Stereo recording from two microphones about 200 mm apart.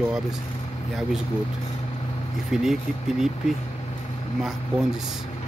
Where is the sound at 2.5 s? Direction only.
Centre (ahead or behind).